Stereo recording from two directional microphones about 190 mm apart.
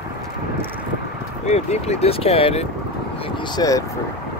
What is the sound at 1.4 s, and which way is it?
Speech, 35° left (ahead or behind).